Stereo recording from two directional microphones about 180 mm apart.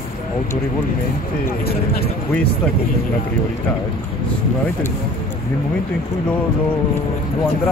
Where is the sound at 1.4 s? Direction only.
60° left (ahead or behind).